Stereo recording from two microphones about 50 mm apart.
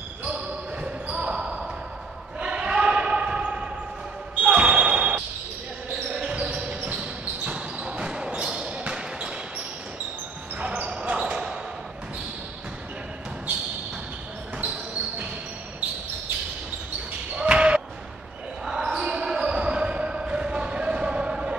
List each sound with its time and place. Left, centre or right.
0.2 s basketball bounce: right
10.6 s basketball bounce: right
17.4 s basketball bounce: right
18.7 s basketball bounce: centre